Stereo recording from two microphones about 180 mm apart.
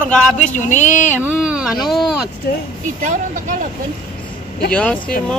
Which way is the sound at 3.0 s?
45° right (ahead or behind).